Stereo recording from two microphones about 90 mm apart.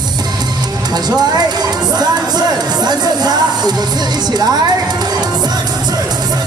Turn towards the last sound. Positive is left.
turn(degrees=-50)  # may be behind; listen again after turning